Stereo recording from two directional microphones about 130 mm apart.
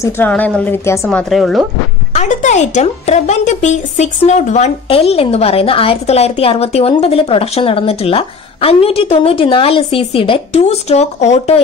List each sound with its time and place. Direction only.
0.3 s a woman's voice: 10° left (ahead or behind)
0.8 s speech: 20° left (ahead or behind)
1.3 s speech: centre (ahead or behind)
2.1 s a woman's voice: 65° left (ahead or behind)
4.8 s a woman's voice: 50° left (ahead or behind)